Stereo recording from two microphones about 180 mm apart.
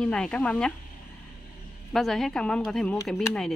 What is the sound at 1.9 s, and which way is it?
Speech, centre (ahead or behind).